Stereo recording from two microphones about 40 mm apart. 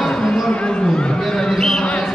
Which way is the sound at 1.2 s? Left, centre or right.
Centre.